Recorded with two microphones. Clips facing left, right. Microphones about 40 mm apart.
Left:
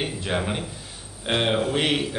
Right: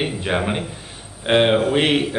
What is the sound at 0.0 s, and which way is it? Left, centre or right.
Speech, right.